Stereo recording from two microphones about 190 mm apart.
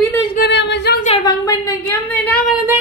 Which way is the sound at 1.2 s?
20° left (ahead or behind).